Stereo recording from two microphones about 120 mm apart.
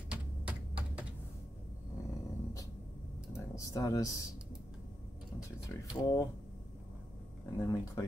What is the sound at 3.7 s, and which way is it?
Speech, 25° left (ahead or behind).